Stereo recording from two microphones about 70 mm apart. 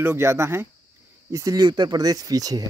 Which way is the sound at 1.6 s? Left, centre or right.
Right.